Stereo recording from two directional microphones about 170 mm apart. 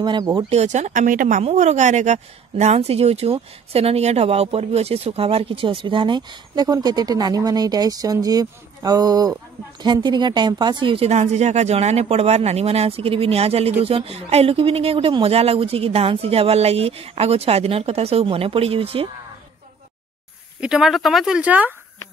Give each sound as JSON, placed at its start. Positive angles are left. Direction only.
{"t": 0.0, "sound": "speech", "side_deg": -25}
{"t": 0.5, "sound": "speech", "side_deg": -40}
{"t": 20.6, "sound": "speech", "side_deg": -5}